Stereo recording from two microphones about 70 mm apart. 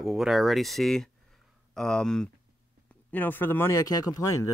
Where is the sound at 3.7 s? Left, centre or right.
Left.